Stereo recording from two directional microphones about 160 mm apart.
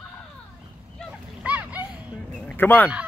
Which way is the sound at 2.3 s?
10° left (ahead or behind).